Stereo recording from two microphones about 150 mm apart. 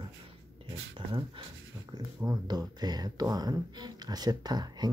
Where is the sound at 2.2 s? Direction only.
25° right (ahead or behind).